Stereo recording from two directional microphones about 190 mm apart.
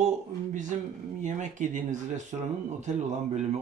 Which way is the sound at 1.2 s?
40° right (ahead or behind).